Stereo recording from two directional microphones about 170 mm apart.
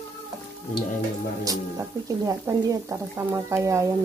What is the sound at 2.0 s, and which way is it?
Speech, 20° right (ahead or behind).